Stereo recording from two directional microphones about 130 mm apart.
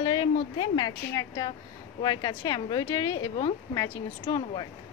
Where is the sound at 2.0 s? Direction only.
35° left (ahead or behind).